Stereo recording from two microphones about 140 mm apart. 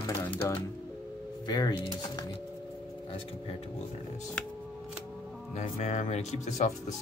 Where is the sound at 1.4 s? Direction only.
30° left (ahead or behind).